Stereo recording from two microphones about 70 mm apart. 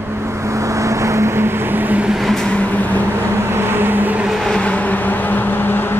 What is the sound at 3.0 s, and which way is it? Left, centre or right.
Vehicle, right.